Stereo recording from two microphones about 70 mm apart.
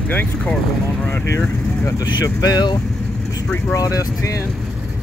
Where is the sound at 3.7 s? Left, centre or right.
Left.